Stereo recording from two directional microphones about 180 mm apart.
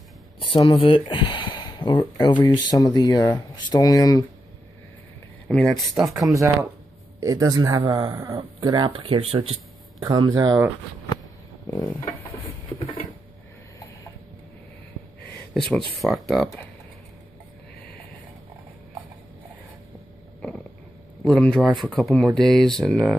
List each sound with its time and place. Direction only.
0.4 s speech: 30° left (ahead or behind)
5.5 s speech: centre (ahead or behind)
6.3 s speech: 15° right (ahead or behind)
11.6 s a sound: 15° left (ahead or behind)
16.0 s speech: centre (ahead or behind)
21.2 s speech: 5° left (ahead or behind)